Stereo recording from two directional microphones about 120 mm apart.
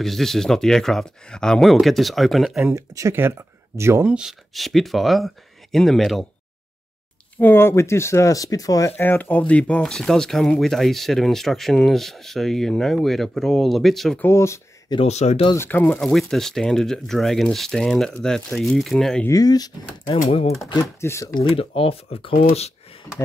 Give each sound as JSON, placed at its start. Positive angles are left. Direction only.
{"t": 0.0, "sound": "speech", "side_deg": 5}
{"t": 2.7, "sound": "speech", "side_deg": -25}
{"t": 4.1, "sound": "speech", "side_deg": -5}
{"t": 7.3, "sound": "speech", "side_deg": 15}
{"t": 8.9, "sound": "speech", "side_deg": 15}
{"t": 14.2, "sound": "speech", "side_deg": 25}
{"t": 15.0, "sound": "speech", "side_deg": 65}
{"t": 15.5, "sound": "speech", "side_deg": 20}
{"t": 16.0, "sound": "speech", "side_deg": 5}
{"t": 19.2, "sound": "speech", "side_deg": 30}
{"t": 20.1, "sound": "speech", "side_deg": 55}
{"t": 21.0, "sound": "speech", "side_deg": 20}
{"t": 21.4, "sound": "speech", "side_deg": 45}